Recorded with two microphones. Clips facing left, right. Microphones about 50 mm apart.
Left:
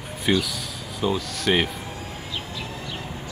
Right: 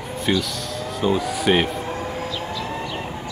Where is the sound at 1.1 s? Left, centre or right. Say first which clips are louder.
Right 4 dB; centre.